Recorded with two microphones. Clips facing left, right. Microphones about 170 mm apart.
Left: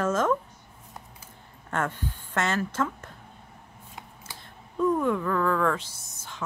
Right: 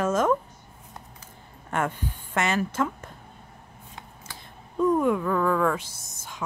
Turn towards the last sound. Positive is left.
turn(degrees=-10)  # may be behind; listen again after turning